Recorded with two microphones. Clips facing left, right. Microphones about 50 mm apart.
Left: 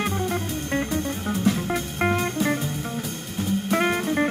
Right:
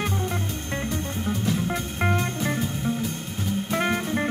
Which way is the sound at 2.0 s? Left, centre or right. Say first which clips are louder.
Left 2 dB; centre.